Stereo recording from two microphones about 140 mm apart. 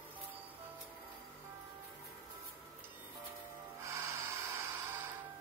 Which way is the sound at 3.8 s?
20° right (ahead or behind).